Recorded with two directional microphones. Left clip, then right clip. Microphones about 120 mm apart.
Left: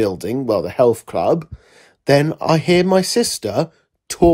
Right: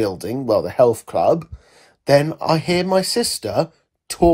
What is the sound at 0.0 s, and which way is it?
Speech, 15° left (ahead or behind).